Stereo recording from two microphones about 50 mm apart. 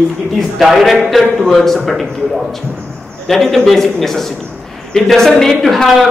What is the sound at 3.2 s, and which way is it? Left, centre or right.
A man's voice, centre.